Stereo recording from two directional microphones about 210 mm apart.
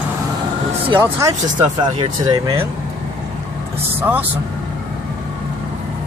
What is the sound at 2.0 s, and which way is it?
Speech, 25° right (ahead or behind).